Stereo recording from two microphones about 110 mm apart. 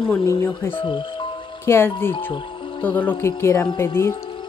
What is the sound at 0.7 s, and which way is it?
Speech, 50° left (ahead or behind).